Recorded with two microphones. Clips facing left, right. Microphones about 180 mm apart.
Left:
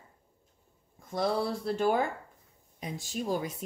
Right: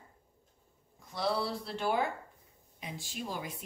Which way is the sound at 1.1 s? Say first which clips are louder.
Left 4 dB; 50° left (ahead or behind).